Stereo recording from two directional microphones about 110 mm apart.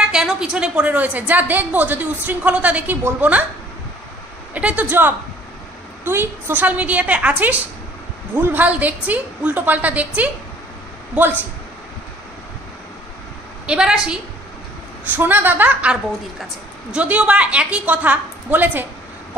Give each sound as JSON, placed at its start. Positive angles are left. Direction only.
{"t": 0.1, "sound": "a woman's voice", "side_deg": -5}
{"t": 4.6, "sound": "a woman's voice", "side_deg": -15}
{"t": 13.7, "sound": "a woman's voice", "side_deg": -5}
{"t": 15.1, "sound": "a woman's voice", "side_deg": -15}